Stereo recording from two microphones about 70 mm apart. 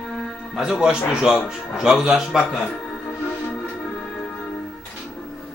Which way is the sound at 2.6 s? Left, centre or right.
Centre.